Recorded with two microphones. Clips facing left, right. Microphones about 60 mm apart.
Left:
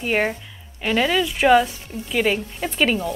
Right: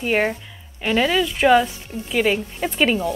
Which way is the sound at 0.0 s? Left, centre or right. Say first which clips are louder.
Right 1 dB; centre.